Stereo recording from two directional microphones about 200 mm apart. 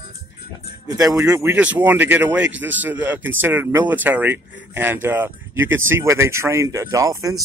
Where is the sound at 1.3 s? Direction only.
10° right (ahead or behind).